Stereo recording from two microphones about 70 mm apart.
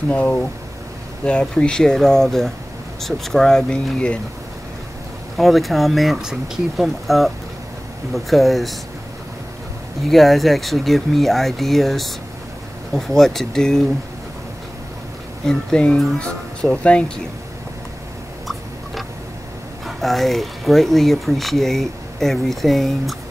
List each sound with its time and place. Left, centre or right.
0.1 s speech: left
5.4 s speech: centre
10.0 s speech: centre
15.4 s speech: centre
20.0 s speech: centre